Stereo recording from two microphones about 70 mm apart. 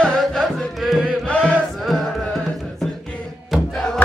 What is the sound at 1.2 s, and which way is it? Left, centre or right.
Chant, centre.